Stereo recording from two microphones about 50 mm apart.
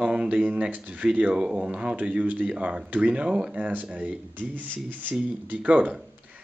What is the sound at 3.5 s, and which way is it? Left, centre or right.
Speech, right.